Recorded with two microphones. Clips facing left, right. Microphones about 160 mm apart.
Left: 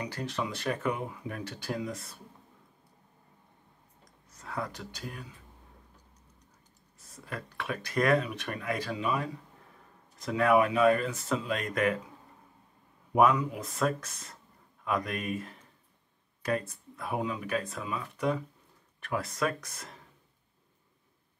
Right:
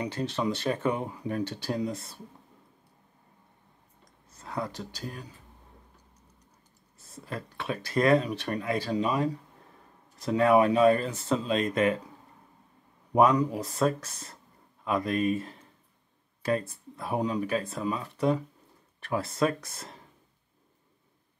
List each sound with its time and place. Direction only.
0.0 s speech: 25° right (ahead or behind)
4.4 s speech: 30° right (ahead or behind)
7.1 s speech: 30° right (ahead or behind)
13.1 s speech: 35° right (ahead or behind)